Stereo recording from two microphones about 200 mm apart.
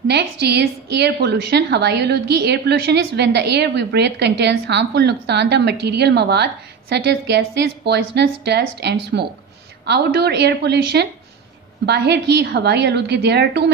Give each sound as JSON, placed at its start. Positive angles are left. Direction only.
{"t": 0.1, "sound": "a woman's voice", "side_deg": -55}